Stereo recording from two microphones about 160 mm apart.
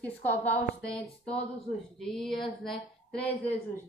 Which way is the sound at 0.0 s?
10° left (ahead or behind).